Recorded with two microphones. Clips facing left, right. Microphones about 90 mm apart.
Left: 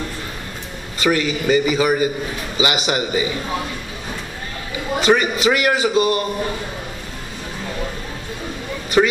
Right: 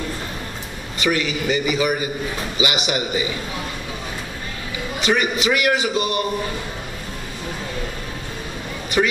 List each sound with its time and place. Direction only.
0.9 s a man's voice: 30° left (ahead or behind)
5.0 s a man's voice: 30° left (ahead or behind)